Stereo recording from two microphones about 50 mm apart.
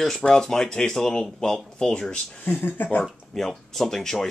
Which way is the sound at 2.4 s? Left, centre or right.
Left.